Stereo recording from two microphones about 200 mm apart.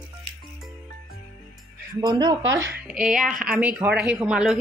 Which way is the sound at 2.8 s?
5° right (ahead or behind).